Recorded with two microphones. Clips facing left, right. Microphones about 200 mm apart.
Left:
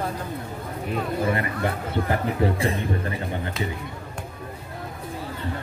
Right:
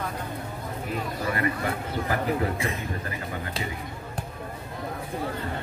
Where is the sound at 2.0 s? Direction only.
30° left (ahead or behind).